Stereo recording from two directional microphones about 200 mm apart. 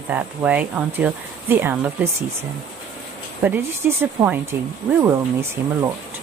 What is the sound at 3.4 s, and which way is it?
Speech, 10° right (ahead or behind).